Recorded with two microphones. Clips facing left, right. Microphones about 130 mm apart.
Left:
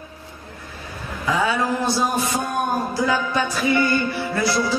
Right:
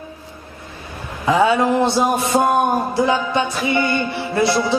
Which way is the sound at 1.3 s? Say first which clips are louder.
Right 6 dB; 25° right (ahead or behind).